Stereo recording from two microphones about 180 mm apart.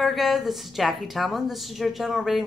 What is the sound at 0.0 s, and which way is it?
A woman's voice, centre (ahead or behind).